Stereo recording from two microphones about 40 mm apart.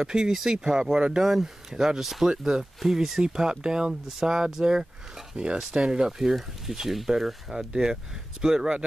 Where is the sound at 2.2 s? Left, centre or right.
Centre.